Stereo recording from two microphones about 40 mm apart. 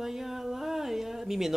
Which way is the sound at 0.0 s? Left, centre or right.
Centre.